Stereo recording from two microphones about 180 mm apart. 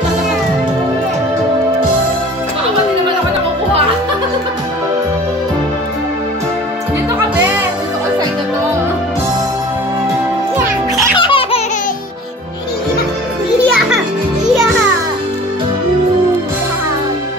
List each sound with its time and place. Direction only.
11.1 s baby laughter: 30° left (ahead or behind)
13.7 s children playing: centre (ahead or behind)